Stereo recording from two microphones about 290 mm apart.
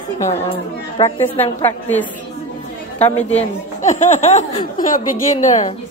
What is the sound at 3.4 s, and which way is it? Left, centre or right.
Speech, left.